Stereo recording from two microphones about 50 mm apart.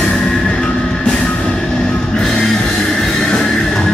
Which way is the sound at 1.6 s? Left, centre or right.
Centre.